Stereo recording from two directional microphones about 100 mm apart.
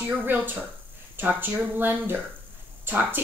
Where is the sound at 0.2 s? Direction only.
15° right (ahead or behind).